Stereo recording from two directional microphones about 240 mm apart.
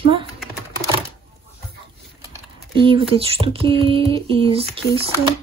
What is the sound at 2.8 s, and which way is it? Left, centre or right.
Speech, right.